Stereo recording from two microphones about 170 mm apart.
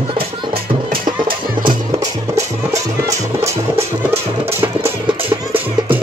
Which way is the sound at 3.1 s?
15° right (ahead or behind).